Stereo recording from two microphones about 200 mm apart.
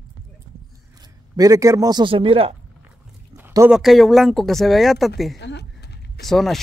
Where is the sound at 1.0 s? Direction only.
15° right (ahead or behind).